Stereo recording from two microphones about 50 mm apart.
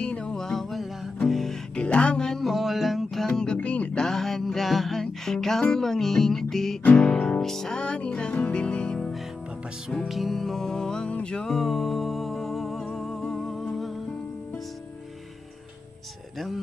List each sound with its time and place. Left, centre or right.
0.0 s music: left
0.5 s music: centre
1.8 s music: left
2.5 s music: centre
3.3 s music: centre
3.5 s music: left
3.9 s music: centre
7.8 s music: left
10.0 s music: centre
11.1 s music: left
11.4 s music: centre